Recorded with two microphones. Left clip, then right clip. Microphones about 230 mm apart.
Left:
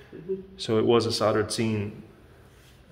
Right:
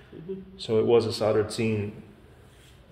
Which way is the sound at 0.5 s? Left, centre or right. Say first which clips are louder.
Right 1 dB; left.